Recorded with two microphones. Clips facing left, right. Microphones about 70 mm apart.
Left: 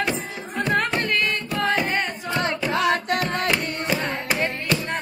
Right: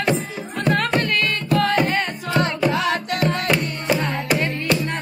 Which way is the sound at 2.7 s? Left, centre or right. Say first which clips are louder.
Left 1 dB; left.